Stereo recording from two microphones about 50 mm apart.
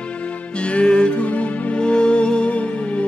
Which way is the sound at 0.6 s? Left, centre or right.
Left.